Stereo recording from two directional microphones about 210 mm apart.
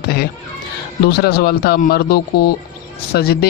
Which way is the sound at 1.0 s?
50° left (ahead or behind).